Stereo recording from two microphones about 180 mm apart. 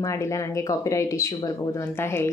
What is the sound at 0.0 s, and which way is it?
Speech, 15° left (ahead or behind).